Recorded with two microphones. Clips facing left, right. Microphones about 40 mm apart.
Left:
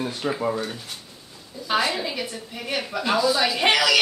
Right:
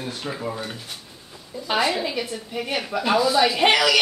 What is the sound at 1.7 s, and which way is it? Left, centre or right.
A woman's voice, centre.